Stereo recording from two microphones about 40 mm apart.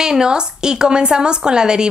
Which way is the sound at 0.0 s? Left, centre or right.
Centre.